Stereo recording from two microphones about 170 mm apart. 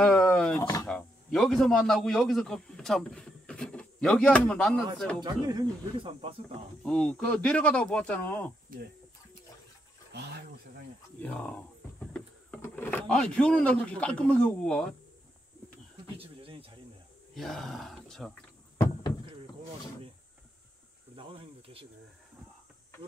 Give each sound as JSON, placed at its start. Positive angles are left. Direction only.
{"t": 0.2, "sound": "a sound", "side_deg": 10}
{"t": 0.8, "sound": "a man's voice", "side_deg": 5}
{"t": 5.2, "sound": "speech", "side_deg": -25}
{"t": 6.8, "sound": "speech", "side_deg": 5}
{"t": 8.7, "sound": "speech", "side_deg": -55}
{"t": 11.2, "sound": "speech", "side_deg": 10}
{"t": 16.2, "sound": "a sound", "side_deg": -35}
{"t": 17.3, "sound": "speech", "side_deg": 0}
{"t": 21.2, "sound": "snake", "side_deg": -30}